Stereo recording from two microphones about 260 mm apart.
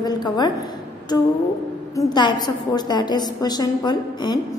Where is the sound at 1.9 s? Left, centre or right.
Centre.